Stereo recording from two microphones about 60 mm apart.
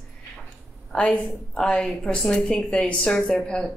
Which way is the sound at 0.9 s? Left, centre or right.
Centre.